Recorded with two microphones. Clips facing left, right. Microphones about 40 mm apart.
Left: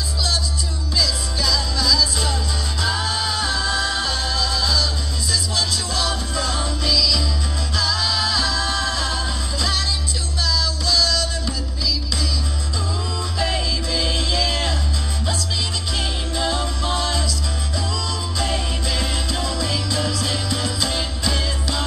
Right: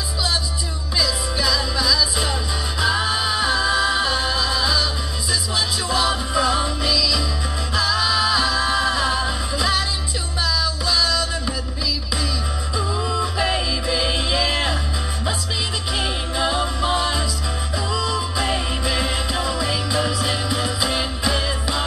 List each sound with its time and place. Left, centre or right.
0.9 s music: centre
12.7 s music: centre
16.0 s music: centre